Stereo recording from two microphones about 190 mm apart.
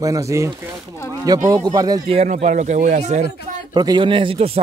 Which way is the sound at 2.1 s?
35° right (ahead or behind).